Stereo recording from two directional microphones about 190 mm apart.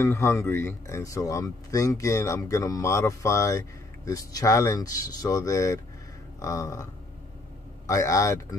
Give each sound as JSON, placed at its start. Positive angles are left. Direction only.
{"t": 0.0, "sound": "speech", "side_deg": 15}